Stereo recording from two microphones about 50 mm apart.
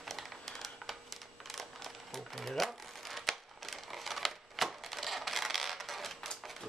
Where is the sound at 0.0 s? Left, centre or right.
Centre.